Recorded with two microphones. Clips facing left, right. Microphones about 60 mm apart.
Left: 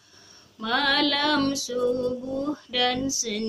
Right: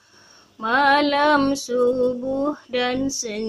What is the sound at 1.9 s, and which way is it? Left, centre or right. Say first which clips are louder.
Music: right 4 dB; centre.